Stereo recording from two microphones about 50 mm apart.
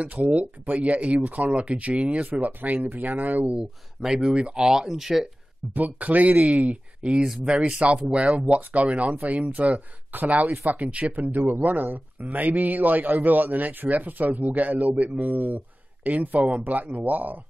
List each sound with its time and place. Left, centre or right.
0.0 s speech: right
4.0 s speech: centre
5.7 s speech: right